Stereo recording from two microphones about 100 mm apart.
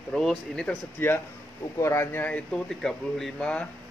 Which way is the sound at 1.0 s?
20° left (ahead or behind).